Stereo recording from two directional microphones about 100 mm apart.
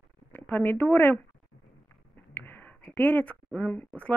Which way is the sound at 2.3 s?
20° left (ahead or behind).